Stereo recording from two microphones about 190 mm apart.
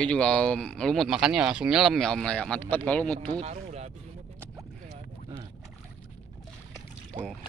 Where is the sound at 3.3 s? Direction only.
40° right (ahead or behind).